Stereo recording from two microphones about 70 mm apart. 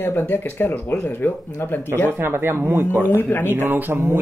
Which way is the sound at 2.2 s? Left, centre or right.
Right.